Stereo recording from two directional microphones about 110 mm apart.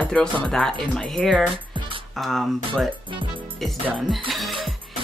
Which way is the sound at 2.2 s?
Centre (ahead or behind).